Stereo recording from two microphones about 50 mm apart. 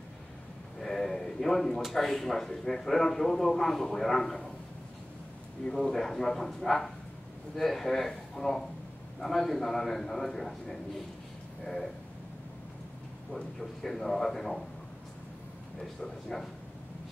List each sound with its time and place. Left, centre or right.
0.7 s a sound: centre
1.8 s a man's voice: centre
5.7 s a man's voice: centre
13.6 s a man's voice: centre
15.8 s a man's voice: centre